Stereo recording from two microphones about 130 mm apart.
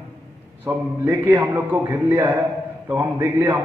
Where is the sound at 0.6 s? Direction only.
15° right (ahead or behind).